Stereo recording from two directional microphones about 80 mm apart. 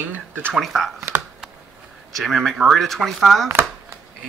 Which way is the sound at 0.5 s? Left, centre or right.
Centre.